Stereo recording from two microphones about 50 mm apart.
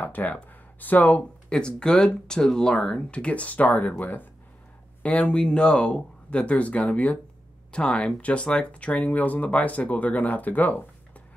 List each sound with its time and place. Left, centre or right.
0.0 s speech: left
1.5 s speech: centre; by 4.3 s left
5.0 s speech: left